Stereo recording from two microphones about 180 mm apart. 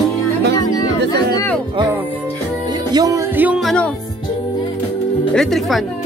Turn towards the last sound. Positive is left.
turn(degrees=0)  # may be behind; listen again after turning